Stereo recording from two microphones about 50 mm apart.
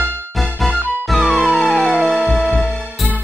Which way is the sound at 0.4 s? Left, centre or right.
Centre.